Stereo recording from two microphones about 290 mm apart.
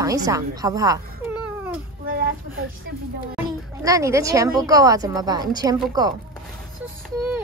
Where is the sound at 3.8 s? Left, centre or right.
Centre.